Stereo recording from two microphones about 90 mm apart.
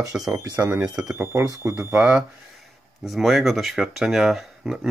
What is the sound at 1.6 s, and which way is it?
Speech, 30° right (ahead or behind).